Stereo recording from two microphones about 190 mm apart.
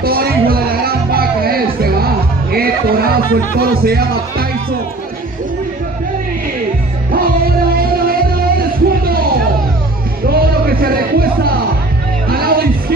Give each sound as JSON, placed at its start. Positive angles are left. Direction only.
{"t": 0.0, "sound": "music", "side_deg": -55}
{"t": 7.1, "sound": "music", "side_deg": -50}